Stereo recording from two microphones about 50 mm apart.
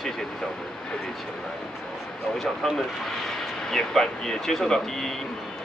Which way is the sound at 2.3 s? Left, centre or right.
Centre.